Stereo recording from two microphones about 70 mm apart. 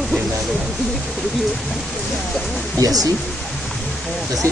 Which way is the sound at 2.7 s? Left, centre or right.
Right.